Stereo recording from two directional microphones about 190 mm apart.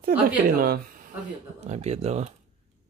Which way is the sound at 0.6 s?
50° right (ahead or behind).